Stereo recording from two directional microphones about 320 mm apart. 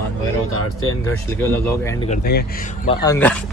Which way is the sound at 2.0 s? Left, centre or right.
Left.